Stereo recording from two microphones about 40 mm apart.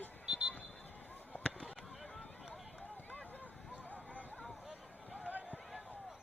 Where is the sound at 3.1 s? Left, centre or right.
Left.